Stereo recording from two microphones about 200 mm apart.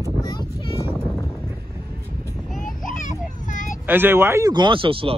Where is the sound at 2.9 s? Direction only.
40° left (ahead or behind).